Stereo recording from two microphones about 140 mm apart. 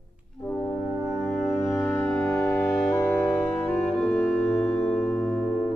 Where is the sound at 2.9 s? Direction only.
20° left (ahead or behind).